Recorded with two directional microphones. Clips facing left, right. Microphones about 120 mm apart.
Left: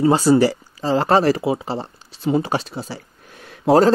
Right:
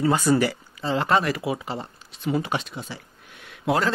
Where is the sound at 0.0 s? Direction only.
30° left (ahead or behind).